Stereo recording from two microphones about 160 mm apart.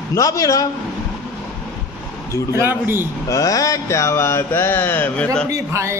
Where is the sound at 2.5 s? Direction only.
15° right (ahead or behind).